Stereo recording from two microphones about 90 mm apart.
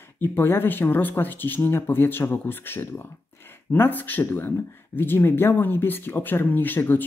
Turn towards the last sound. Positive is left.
turn(degrees=20)  # may be behind; listen again after turning